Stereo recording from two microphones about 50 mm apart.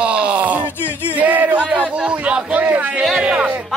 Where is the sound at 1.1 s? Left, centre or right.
Right.